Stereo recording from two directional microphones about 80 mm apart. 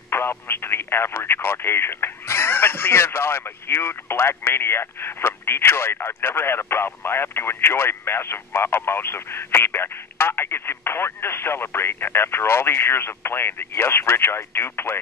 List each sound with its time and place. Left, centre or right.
0.1 s speech: left